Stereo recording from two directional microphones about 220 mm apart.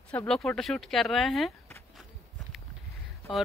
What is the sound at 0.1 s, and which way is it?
Speech, 5° left (ahead or behind).